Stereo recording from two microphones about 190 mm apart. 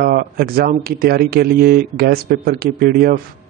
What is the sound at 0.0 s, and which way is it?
A man's voice, 50° right (ahead or behind).